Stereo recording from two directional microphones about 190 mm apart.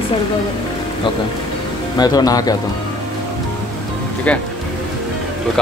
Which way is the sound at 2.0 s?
20° left (ahead or behind).